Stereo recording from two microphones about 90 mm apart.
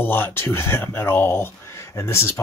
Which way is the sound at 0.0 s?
25° left (ahead or behind).